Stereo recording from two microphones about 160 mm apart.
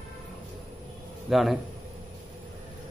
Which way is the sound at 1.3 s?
Centre (ahead or behind).